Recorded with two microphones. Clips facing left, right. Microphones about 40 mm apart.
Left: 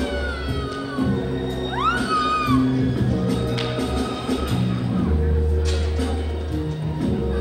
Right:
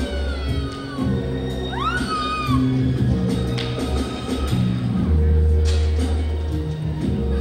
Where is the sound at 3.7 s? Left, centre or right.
Left; by 5.9 s centre.